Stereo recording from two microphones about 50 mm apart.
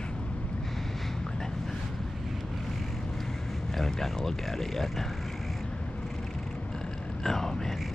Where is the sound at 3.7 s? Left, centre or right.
Centre.